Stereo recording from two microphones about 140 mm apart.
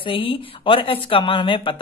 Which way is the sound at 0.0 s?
40° left (ahead or behind).